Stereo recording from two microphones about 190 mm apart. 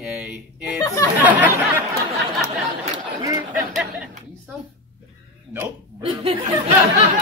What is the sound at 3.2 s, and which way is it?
Speech, 15° right (ahead or behind).